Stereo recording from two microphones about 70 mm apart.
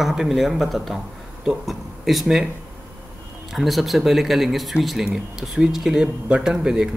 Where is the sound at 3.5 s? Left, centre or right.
Centre.